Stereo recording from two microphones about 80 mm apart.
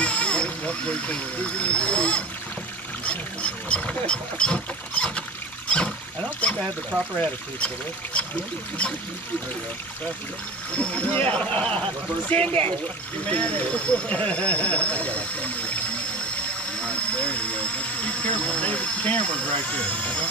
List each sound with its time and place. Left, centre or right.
0.0 s speech: centre
3.6 s rodents: centre
7.2 s speech: centre
10.8 s speech: left
16.8 s speech: centre